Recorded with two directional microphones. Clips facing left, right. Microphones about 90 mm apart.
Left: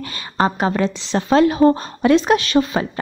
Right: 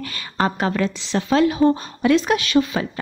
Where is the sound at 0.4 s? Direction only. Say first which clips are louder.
Left 3 dB; 25° left (ahead or behind).